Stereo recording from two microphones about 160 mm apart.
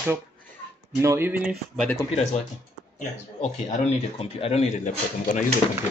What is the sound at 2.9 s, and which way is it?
Speech, 45° left (ahead or behind).